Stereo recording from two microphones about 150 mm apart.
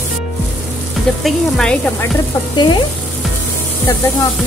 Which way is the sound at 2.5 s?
30° left (ahead or behind).